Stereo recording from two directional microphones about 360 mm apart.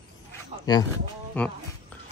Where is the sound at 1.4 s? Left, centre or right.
Centre.